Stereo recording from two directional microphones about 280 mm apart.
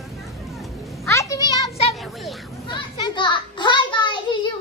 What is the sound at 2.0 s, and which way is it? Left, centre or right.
Speech, centre.